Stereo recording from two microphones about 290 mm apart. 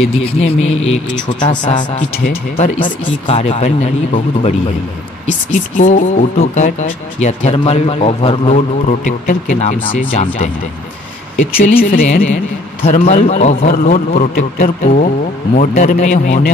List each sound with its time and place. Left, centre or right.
0.9 s speech: centre
11.5 s speech: left